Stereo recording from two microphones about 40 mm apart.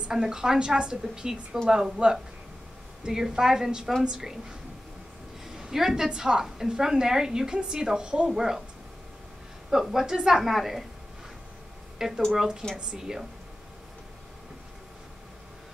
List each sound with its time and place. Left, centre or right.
0.1 s a woman's voice: centre
5.6 s a woman's voice: centre
9.7 s a woman's voice: centre
12.0 s a woman's voice: centre